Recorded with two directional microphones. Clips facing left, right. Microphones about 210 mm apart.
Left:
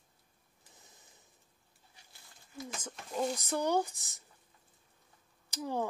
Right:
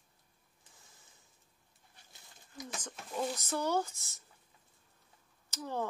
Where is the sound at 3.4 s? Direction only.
15° left (ahead or behind).